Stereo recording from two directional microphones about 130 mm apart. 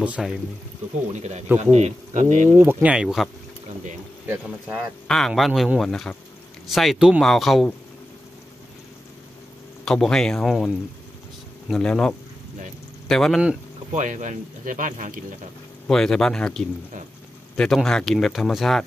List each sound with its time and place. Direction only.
0.0 s speech: 10° right (ahead or behind)
1.1 s speech: 60° right (ahead or behind)
2.5 s speech: 15° right (ahead or behind)
5.0 s speech: 5° left (ahead or behind)
9.8 s speech: 5° left (ahead or behind)
13.9 s speech: 70° right (ahead or behind); by 15.1 s 85° right
15.9 s speech: 5° left (ahead or behind)